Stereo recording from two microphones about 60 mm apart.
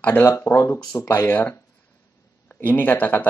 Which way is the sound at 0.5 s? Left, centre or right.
Left.